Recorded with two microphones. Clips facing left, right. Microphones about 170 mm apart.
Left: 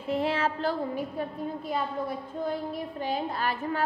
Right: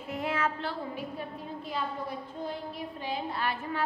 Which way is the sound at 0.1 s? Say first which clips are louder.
Left 4 dB; 30° left (ahead or behind).